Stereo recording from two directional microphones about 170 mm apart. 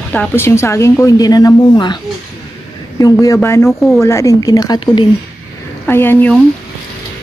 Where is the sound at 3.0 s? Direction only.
20° left (ahead or behind).